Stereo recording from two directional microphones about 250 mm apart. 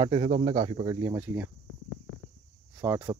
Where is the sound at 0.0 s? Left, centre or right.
Right; by 1.5 s centre.